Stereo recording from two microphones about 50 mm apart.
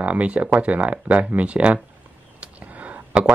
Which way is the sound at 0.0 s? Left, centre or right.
Right.